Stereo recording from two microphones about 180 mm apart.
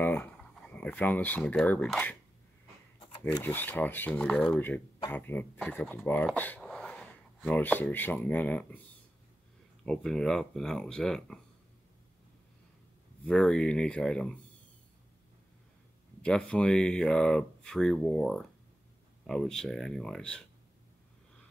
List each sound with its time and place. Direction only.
0.0 s speech: 10° left (ahead or behind)
3.0 s a sound: 25° left (ahead or behind)
3.5 s speech: 10° left (ahead or behind)
9.8 s speech: 5° left (ahead or behind)
13.2 s speech: 5° left (ahead or behind)
16.2 s speech: 5° left (ahead or behind)